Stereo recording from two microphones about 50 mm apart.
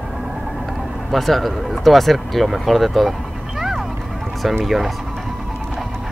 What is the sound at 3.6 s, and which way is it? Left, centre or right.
Vehicle, centre.